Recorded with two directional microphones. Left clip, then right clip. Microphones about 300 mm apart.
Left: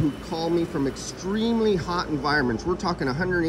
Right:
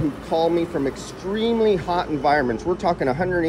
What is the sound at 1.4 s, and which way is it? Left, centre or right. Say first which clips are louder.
Speech: right 4 dB; centre.